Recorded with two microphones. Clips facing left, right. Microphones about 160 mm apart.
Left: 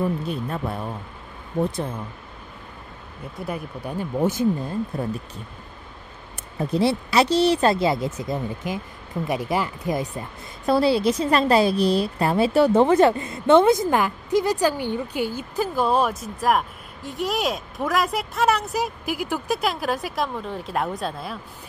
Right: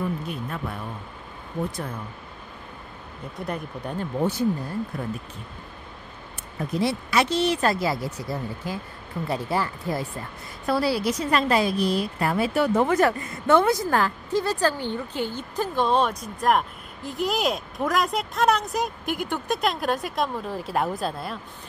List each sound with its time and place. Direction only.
0.3 s speech: 30° left (ahead or behind)
3.3 s a woman's voice: 5° left (ahead or behind); by 5.0 s 20° left (ahead or behind)
6.6 s a woman's voice: 30° left (ahead or behind); by 21.4 s centre (ahead or behind)